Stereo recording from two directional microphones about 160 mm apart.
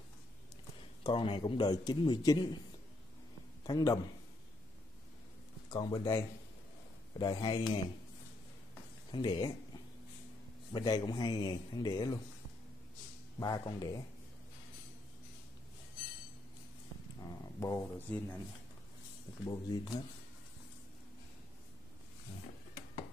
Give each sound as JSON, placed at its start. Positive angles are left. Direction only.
{"t": 1.0, "sound": "a man's voice", "side_deg": 35}
{"t": 3.6, "sound": "a man's voice", "side_deg": 20}
{"t": 5.7, "sound": "a man's voice", "side_deg": 20}
{"t": 9.1, "sound": "a man's voice", "side_deg": 30}
{"t": 10.7, "sound": "a man's voice", "side_deg": 25}
{"t": 13.4, "sound": "a man's voice", "side_deg": 25}
{"t": 17.3, "sound": "speech", "side_deg": 20}
{"t": 19.4, "sound": "a man's voice", "side_deg": 25}